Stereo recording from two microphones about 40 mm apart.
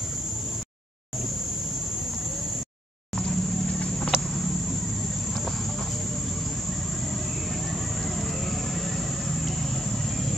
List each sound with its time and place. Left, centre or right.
3.2 s vehicle: left
8.2 s vehicle: centre